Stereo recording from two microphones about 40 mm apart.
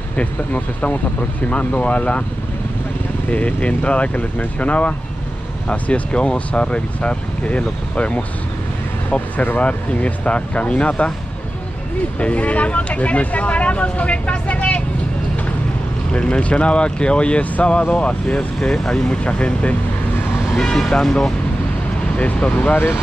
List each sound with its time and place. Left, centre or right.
0.1 s speech: left
3.3 s speech: left
9.6 s speech: left
12.2 s speech: left
16.1 s speech: left
18.6 s speech: centre
20.5 s speech: centre
20.8 s speech: centre
22.1 s speech: left